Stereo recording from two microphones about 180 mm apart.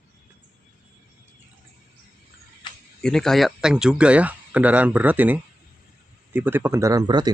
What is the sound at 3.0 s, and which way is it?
Speech, 5° left (ahead or behind).